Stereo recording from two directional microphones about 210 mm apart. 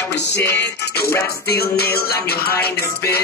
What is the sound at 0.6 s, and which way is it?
Music, 50° left (ahead or behind).